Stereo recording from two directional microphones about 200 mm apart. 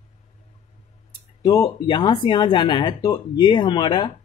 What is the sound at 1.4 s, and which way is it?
Speech, 20° left (ahead or behind).